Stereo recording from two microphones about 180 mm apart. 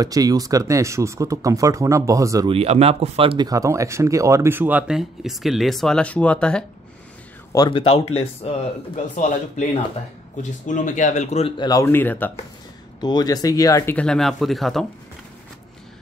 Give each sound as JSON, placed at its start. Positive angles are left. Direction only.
{"t": 0.0, "sound": "speech", "side_deg": -20}
{"t": 2.5, "sound": "speech", "side_deg": -35}
{"t": 7.5, "sound": "speech", "side_deg": 20}
{"t": 7.8, "sound": "speech", "side_deg": 35}
{"t": 13.0, "sound": "speech", "side_deg": 20}